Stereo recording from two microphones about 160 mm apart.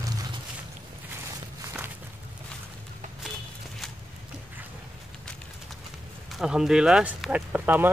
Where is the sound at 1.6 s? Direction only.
15° right (ahead or behind).